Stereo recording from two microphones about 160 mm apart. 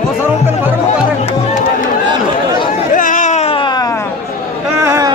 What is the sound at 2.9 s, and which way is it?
Baby cry, 55° left (ahead or behind).